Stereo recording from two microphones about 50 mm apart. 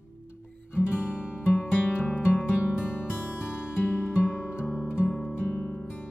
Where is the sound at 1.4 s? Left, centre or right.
Left.